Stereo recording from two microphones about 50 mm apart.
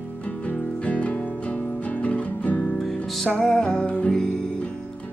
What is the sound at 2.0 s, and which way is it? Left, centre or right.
Guitar, left.